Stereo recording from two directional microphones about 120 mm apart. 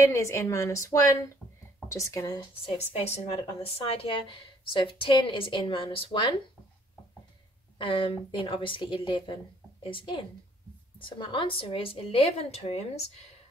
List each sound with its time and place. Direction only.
0.0 s a woman's voice: 25° left (ahead or behind)
2.9 s speech: 60° left (ahead or behind); by 6.3 s 45° left (ahead or behind)
7.8 s speech: 45° left (ahead or behind)